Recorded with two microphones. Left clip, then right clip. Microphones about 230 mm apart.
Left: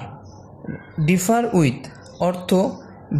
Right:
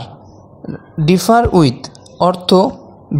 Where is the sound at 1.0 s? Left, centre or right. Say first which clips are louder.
Right 8 dB; centre.